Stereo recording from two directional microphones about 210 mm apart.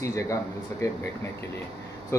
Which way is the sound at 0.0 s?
15° left (ahead or behind).